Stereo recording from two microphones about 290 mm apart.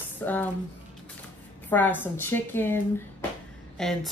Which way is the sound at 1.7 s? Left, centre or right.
Centre.